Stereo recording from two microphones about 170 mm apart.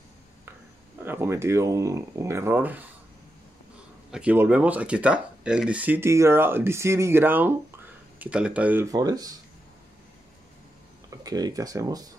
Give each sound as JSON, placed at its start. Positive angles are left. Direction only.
{"t": 1.0, "sound": "speech", "side_deg": -15}
{"t": 4.1, "sound": "speech", "side_deg": -10}
{"t": 8.8, "sound": "speech", "side_deg": -20}
{"t": 11.2, "sound": "speech", "side_deg": -20}